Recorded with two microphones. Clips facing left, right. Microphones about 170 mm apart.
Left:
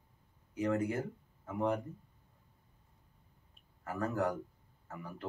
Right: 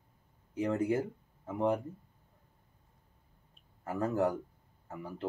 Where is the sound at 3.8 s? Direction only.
25° right (ahead or behind).